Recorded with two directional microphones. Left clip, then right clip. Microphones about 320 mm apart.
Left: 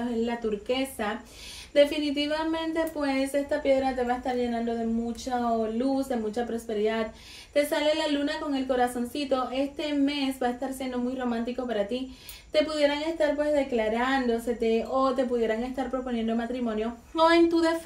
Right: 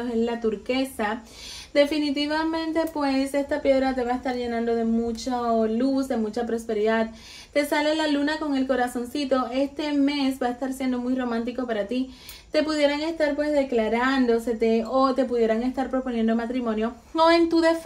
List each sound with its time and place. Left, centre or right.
1.7 s a woman's voice: right